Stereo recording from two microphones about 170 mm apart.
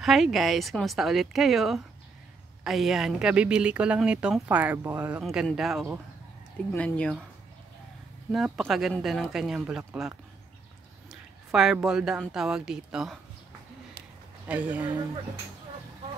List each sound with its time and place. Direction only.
0.0 s speech: centre (ahead or behind)
6.7 s speech: 10° left (ahead or behind)
8.3 s speech: centre (ahead or behind)
14.5 s speech: 10° right (ahead or behind)